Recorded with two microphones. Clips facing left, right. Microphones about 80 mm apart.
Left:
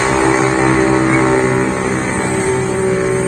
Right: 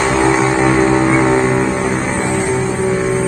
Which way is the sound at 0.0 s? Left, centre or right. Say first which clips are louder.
Even; centre.